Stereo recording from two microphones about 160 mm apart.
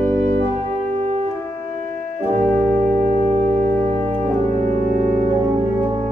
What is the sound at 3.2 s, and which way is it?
Music, 40° right (ahead or behind).